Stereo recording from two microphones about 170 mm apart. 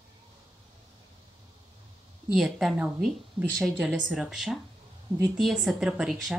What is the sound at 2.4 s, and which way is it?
A woman's voice, centre (ahead or behind).